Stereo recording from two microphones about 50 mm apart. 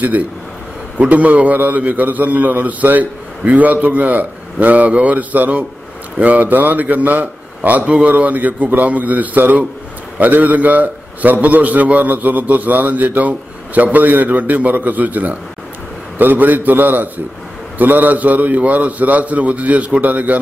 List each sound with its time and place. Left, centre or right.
0.9 s a man's voice: right